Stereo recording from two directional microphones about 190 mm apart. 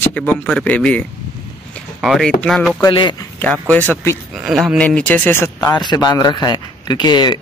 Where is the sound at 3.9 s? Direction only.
15° left (ahead or behind).